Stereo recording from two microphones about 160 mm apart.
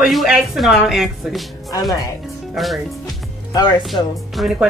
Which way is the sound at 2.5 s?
Centre (ahead or behind).